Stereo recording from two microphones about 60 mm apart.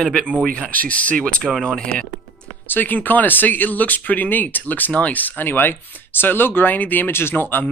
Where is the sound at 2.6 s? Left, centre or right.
Left.